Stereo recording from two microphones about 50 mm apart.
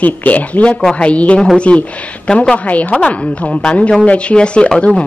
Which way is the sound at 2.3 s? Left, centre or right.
Centre.